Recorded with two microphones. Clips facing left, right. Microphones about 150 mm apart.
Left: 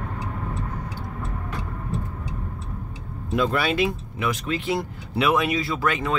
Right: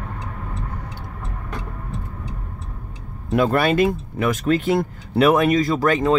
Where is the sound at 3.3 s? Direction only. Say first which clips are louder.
Right 5 dB; 55° right (ahead or behind).